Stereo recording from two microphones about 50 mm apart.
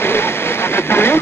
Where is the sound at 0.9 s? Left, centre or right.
Left.